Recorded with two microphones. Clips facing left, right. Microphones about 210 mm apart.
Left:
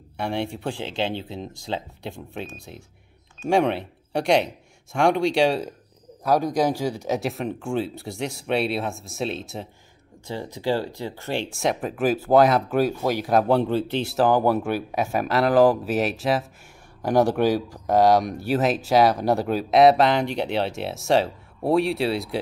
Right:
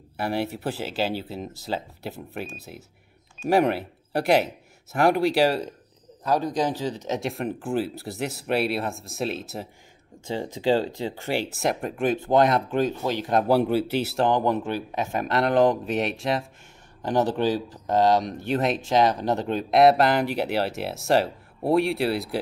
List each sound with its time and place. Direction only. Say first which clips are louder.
0.2 s speech: even; 5° right (ahead or behind)
6.2 s speech: left 3 dB; 10° left (ahead or behind)
10.2 s speech: right 2 dB; 20° right (ahead or behind); by 13.3 s 10° left (ahead or behind)
13.5 s speech: even; 10° right (ahead or behind)
14.1 s speech: left 4 dB; 5° left (ahead or behind)